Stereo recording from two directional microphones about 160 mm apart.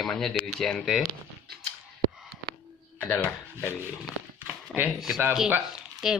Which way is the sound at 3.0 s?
10° left (ahead or behind).